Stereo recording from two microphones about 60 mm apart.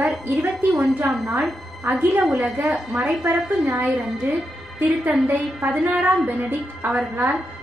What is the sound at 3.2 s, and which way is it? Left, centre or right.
Speech, right.